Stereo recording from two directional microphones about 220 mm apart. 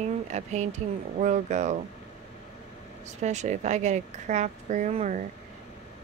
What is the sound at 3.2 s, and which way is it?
Speech, 30° right (ahead or behind).